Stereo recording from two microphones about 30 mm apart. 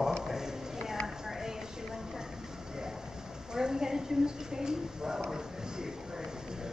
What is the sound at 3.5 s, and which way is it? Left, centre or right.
A woman's voice, right.